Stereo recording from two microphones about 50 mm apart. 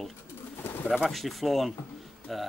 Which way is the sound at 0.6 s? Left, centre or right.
Left.